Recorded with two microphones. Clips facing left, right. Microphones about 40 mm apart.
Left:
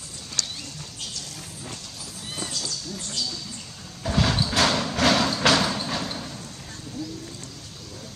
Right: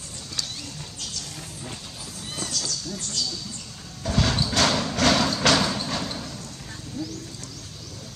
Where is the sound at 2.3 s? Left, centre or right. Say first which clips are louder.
Right 1 dB; centre.